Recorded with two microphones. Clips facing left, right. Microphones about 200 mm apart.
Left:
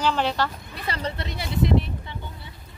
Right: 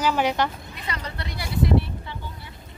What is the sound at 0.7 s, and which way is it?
Speech, 30° left (ahead or behind).